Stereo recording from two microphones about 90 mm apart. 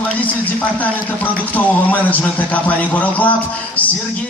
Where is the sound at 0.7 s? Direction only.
20° left (ahead or behind).